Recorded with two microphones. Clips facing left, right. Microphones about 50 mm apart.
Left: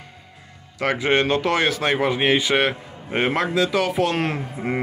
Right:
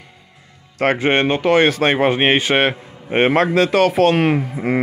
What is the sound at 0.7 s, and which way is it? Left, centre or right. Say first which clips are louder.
Speech: right 4 dB; right.